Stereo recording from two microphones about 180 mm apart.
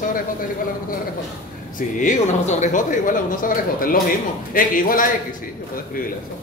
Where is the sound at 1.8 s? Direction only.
45° left (ahead or behind).